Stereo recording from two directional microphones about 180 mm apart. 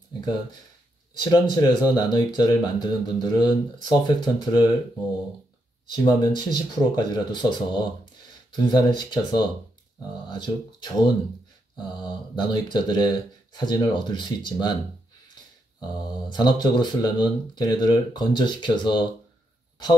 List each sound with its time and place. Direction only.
1.2 s speech: 20° left (ahead or behind)
6.0 s speech: 25° left (ahead or behind)
16.0 s speech: 25° left (ahead or behind)